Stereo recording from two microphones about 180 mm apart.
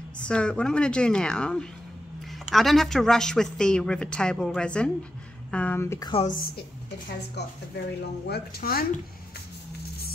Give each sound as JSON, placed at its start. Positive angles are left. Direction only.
{"t": 0.2, "sound": "a woman's voice", "side_deg": 5}
{"t": 7.1, "sound": "speech", "side_deg": 65}